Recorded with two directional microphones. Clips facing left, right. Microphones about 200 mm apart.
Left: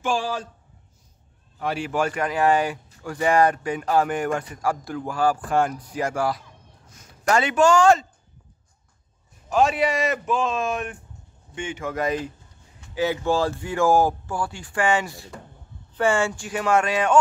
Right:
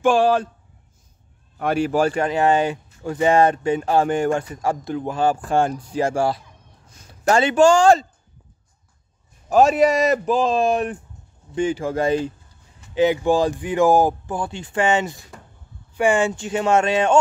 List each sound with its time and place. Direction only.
0.0 s a man's voice: 60° right (ahead or behind)
1.6 s a man's voice: 45° right (ahead or behind)
9.5 s a man's voice: 40° right (ahead or behind)
12.9 s speech: 20° right (ahead or behind)